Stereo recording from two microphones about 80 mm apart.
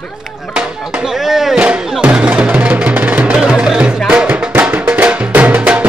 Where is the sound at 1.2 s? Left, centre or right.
Centre.